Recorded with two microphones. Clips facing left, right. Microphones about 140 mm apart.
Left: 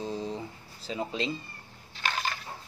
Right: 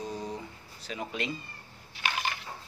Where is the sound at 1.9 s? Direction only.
15° right (ahead or behind).